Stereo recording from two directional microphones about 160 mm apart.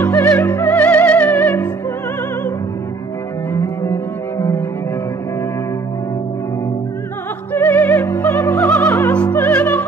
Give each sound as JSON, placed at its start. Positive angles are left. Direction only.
{"t": 0.0, "sound": "music", "side_deg": 20}
{"t": 3.5, "sound": "cello", "side_deg": 15}
{"t": 7.5, "sound": "opera", "side_deg": 10}
{"t": 8.6, "sound": "music", "side_deg": 10}